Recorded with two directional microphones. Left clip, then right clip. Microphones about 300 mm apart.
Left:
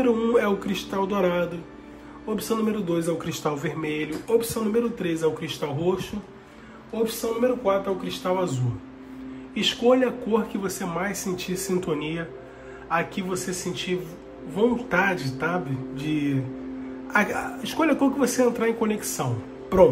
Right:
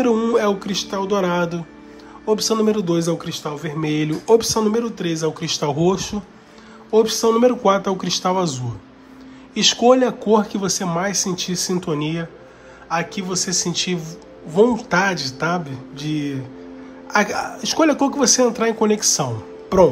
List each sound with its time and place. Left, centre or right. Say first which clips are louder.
0.0 s speech: right 4 dB; centre
9.5 s speech: right 7 dB; centre